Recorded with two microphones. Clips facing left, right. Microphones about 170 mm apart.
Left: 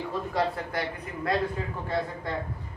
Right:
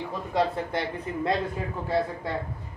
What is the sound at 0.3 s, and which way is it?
A man's voice, 25° right (ahead or behind).